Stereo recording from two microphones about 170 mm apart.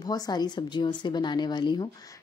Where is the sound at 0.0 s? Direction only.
20° left (ahead or behind).